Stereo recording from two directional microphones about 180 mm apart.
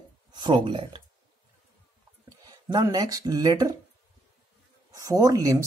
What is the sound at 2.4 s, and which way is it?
Speech, 20° right (ahead or behind).